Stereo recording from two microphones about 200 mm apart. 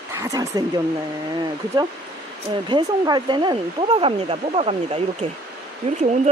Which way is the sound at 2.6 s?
20° right (ahead or behind).